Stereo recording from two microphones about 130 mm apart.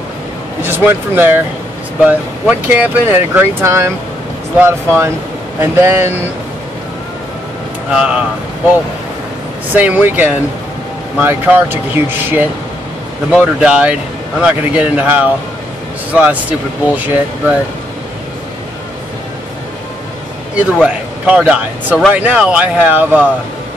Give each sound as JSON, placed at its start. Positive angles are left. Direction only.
{"t": 0.6, "sound": "speech", "side_deg": -15}
{"t": 7.9, "sound": "speech", "side_deg": -5}
{"t": 9.8, "sound": "speech", "side_deg": -10}
{"t": 20.8, "sound": "a man's voice", "side_deg": -10}